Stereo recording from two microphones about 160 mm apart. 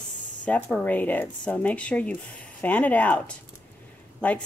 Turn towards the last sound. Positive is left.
turn(degrees=5)  # may be behind; listen again after turning